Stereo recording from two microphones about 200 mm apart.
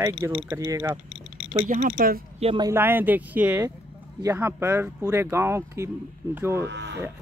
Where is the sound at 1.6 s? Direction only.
40° right (ahead or behind).